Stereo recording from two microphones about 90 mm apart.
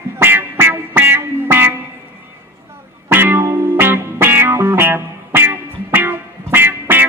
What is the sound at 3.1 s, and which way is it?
Music, 25° right (ahead or behind).